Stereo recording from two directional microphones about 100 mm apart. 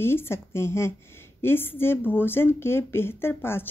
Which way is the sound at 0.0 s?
25° left (ahead or behind).